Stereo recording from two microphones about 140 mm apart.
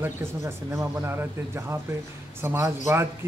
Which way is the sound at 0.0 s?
20° right (ahead or behind).